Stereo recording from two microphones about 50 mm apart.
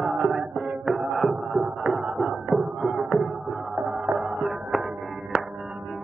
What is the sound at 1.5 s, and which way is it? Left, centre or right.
Music, centre.